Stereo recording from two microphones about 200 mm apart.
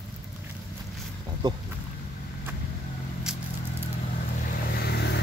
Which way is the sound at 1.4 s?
20° right (ahead or behind).